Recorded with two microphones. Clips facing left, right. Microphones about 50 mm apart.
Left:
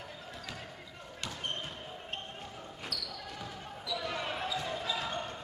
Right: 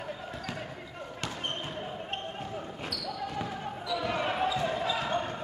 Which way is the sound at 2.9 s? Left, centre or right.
Right.